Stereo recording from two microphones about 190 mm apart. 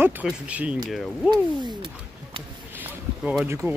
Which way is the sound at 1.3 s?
25° right (ahead or behind).